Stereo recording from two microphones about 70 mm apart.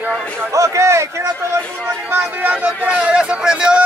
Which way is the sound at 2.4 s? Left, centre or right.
Right.